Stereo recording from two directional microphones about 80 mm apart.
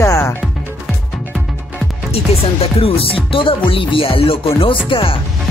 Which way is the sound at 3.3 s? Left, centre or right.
Left.